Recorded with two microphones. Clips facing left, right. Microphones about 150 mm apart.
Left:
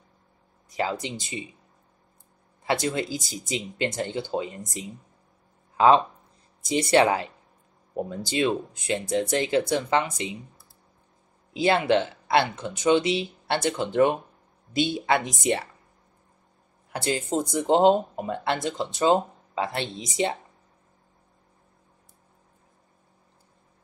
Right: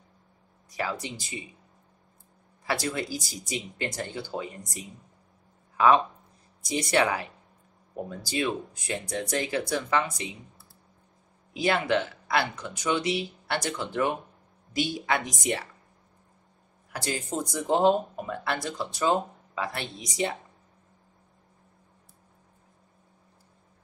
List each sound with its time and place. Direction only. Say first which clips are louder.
0.7 s speech: left 4 dB; 25° left (ahead or behind)
2.6 s speech: left 4 dB; 20° left (ahead or behind)
5.8 s speech: left 3 dB; 25° left (ahead or behind)
11.5 s speech: left 4 dB; 25° left (ahead or behind)
16.9 s speech: left 5 dB; 25° left (ahead or behind)